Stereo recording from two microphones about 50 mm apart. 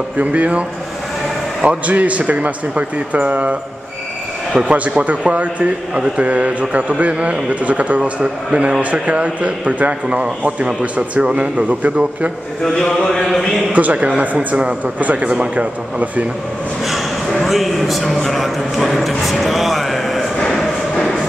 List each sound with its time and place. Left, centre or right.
0.2 s a man's voice: right
1.9 s a man's voice: right
4.6 s a man's voice: right
8.0 s a man's voice: centre
12.6 s speech: centre
13.7 s a man's voice: right
17.5 s speech: centre
20.3 s a sound: centre